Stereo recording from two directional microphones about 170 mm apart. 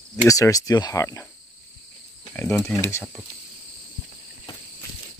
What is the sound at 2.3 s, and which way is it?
Speech, 10° left (ahead or behind).